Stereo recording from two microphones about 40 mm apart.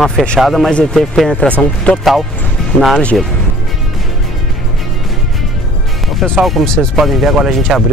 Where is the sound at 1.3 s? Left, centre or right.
Left.